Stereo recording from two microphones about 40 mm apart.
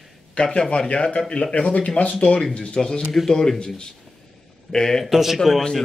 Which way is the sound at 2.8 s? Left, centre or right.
Centre.